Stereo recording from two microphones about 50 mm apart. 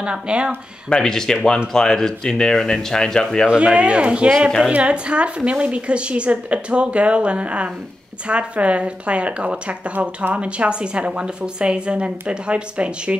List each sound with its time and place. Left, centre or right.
0.0 s a woman's voice: centre
0.8 s speech: centre
3.4 s a woman's voice: centre